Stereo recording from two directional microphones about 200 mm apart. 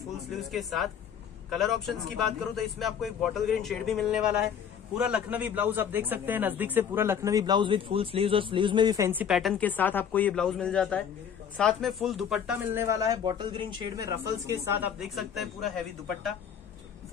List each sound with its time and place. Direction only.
0.3 s a man's voice: centre (ahead or behind)
12.8 s a man's voice: 20° right (ahead or behind)
15.0 s a man's voice: centre (ahead or behind)